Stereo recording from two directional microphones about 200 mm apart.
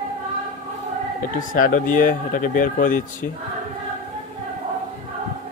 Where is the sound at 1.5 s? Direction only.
40° left (ahead or behind).